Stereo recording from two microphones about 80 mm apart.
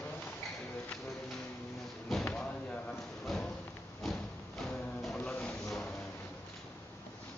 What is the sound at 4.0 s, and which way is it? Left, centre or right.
Music, centre.